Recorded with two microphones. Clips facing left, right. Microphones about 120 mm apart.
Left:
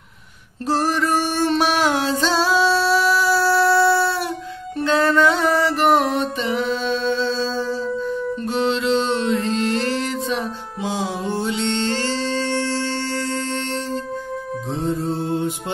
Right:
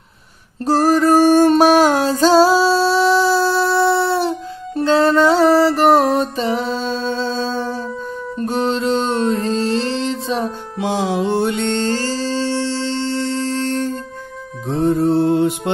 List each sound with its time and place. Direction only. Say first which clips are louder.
0.7 s music: right 7 dB; 40° right (ahead or behind); by 7.8 s 55° right (ahead or behind)
8.4 s music: right 5 dB; 45° right (ahead or behind)
10.8 s music: right 6 dB; 80° right; by 14.0 s 45° right (ahead or behind)
14.7 s music: right 9 dB; 60° right (ahead or behind)